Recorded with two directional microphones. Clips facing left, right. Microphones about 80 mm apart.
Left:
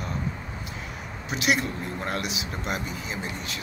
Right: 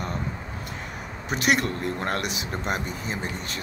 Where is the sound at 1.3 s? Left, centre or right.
Right.